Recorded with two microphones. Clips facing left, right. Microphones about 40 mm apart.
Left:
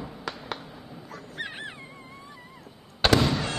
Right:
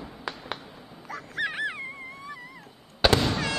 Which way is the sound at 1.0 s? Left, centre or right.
Right.